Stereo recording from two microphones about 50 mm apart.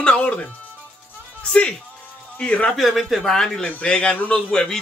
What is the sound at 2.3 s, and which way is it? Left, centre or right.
Speech, left.